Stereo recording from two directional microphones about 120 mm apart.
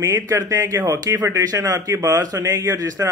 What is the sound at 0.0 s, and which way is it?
Speech, 25° right (ahead or behind).